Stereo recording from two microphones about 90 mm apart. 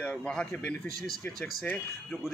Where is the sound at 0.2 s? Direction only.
10° left (ahead or behind).